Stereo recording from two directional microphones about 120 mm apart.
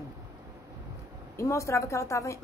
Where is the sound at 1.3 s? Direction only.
25° left (ahead or behind).